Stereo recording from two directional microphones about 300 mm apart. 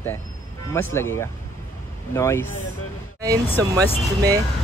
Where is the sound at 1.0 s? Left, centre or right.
Centre.